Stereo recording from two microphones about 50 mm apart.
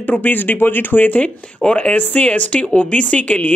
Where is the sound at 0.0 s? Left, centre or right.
Left.